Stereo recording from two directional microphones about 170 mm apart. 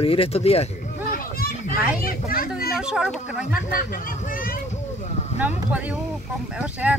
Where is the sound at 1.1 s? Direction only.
55° left (ahead or behind).